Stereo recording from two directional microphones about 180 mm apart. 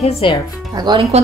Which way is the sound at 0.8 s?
30° right (ahead or behind).